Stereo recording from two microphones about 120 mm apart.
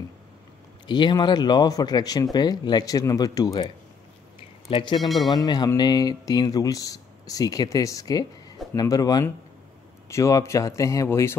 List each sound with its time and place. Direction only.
0.8 s speech: 40° left (ahead or behind)
4.6 s speech: 45° left (ahead or behind)
5.0 s speech: centre (ahead or behind)
5.3 s speech: 35° left (ahead or behind)